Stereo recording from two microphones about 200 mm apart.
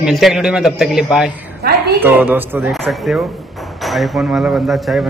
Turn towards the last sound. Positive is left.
turn(degrees=-5)  # may be behind; listen again after turning